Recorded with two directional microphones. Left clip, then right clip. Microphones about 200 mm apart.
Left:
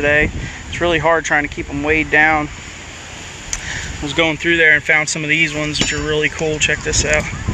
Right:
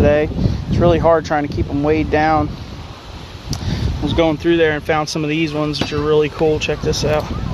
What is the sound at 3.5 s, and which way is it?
Speech, 25° right (ahead or behind).